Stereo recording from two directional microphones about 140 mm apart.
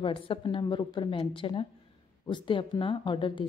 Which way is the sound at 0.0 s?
40° left (ahead or behind).